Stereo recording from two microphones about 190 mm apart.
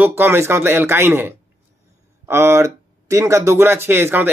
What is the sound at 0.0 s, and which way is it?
Speech, 10° right (ahead or behind).